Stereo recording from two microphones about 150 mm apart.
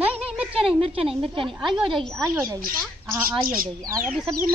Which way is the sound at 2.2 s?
20° right (ahead or behind).